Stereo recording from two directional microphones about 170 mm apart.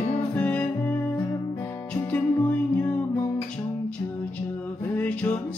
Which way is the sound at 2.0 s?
15° left (ahead or behind).